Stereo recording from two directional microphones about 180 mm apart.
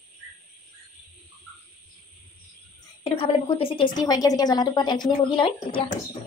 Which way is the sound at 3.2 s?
30° left (ahead or behind).